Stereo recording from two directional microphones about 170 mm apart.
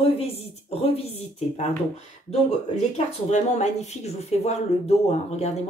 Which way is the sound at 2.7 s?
40° left (ahead or behind).